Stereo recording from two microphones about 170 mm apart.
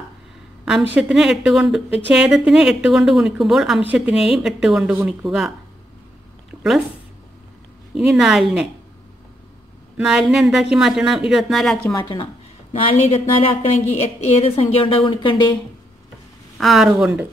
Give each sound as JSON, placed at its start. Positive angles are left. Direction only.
{"t": 0.9, "sound": "speech", "side_deg": -5}
{"t": 7.9, "sound": "speech", "side_deg": 0}
{"t": 9.9, "sound": "speech", "side_deg": -5}
{"t": 11.9, "sound": "a woman's voice", "side_deg": 25}
{"t": 16.5, "sound": "speech", "side_deg": 0}